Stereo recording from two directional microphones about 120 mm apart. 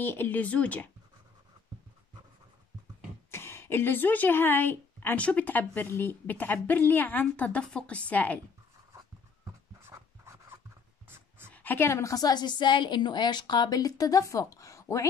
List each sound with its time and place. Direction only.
0.0 s speech: 15° left (ahead or behind)
3.3 s speech: 20° left (ahead or behind)
8.9 s writing: 25° right (ahead or behind)
11.5 s a woman's voice: 15° left (ahead or behind)